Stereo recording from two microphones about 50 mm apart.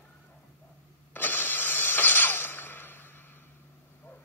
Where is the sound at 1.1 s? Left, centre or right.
Left.